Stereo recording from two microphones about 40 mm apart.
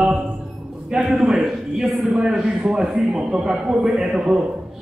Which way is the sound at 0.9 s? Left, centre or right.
Centre.